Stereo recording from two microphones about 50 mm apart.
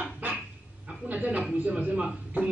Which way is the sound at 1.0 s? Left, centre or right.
Right.